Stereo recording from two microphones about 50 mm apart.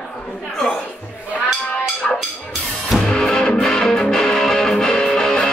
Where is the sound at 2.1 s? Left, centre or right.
Centre.